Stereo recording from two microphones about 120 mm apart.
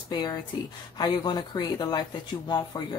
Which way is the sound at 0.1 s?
40° left (ahead or behind).